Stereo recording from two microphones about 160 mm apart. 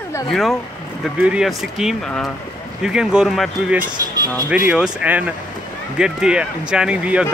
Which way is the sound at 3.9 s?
25° right (ahead or behind).